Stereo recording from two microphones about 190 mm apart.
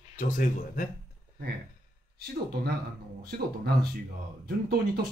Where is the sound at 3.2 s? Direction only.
55° right (ahead or behind).